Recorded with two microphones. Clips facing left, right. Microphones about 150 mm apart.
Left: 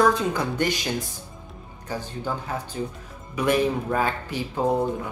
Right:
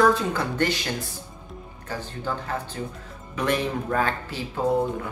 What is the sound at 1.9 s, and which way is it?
Speech, 15° left (ahead or behind).